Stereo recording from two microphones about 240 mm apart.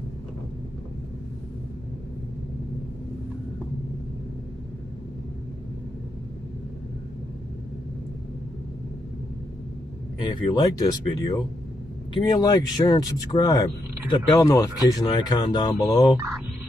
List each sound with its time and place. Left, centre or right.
10.2 s speech: centre